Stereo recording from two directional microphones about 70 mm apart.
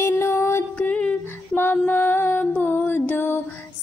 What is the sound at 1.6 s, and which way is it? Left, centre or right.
Music, left.